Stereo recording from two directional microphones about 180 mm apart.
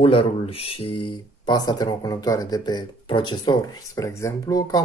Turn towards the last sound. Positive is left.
turn(degrees=20)  # may be behind; listen again after turning